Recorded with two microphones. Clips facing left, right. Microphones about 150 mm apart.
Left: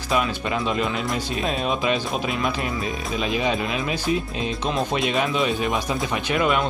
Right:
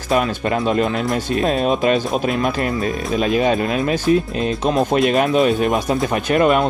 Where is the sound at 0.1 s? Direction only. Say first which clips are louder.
Right 5 dB; 45° right (ahead or behind).